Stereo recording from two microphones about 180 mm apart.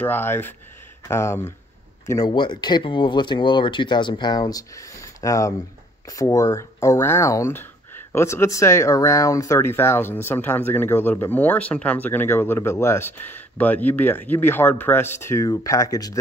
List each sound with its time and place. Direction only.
0.0 s speech: 10° left (ahead or behind)